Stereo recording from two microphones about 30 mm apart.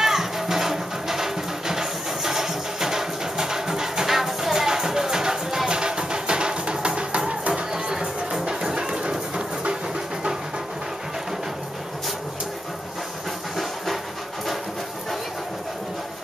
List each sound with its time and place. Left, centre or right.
0.0 s music: centre; by 7.6 s right
7.7 s music: right